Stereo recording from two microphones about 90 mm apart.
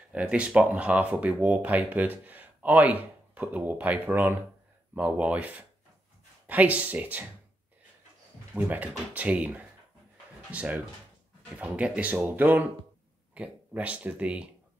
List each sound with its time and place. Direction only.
0.1 s speech: 10° right (ahead or behind)
8.5 s speech: 20° right (ahead or behind)